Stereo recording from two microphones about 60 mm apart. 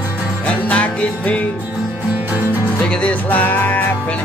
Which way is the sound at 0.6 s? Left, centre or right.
Left.